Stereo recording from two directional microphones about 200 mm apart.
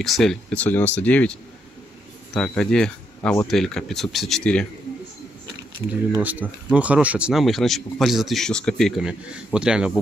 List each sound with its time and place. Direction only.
0.0 s speech: centre (ahead or behind)
6.1 s speech: 10° right (ahead or behind)